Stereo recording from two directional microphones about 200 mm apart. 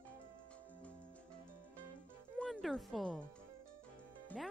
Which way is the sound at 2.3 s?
5° left (ahead or behind).